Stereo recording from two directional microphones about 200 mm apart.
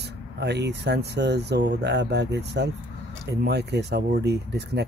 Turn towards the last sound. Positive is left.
turn(degrees=-55)  # may be behind; listen again after turning